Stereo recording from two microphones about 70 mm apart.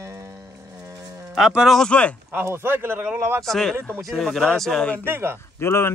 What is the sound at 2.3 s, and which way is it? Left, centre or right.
Speech, right.